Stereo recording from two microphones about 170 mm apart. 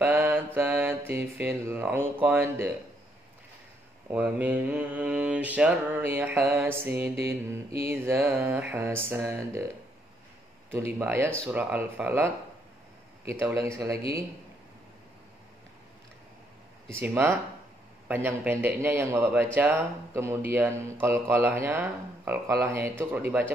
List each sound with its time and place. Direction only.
0.0 s mantra: 15° right (ahead or behind)
0.6 s a man's voice: 15° right (ahead or behind)
4.1 s a man's voice: 10° right (ahead or behind)
10.7 s a man's voice: 15° right (ahead or behind)
13.3 s a man's voice: 15° right (ahead or behind)
17.0 s a man's voice: 15° right (ahead or behind)